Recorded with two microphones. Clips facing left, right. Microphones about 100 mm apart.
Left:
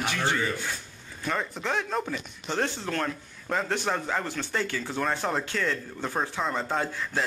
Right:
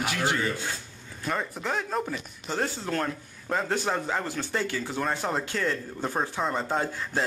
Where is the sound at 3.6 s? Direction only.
10° right (ahead or behind).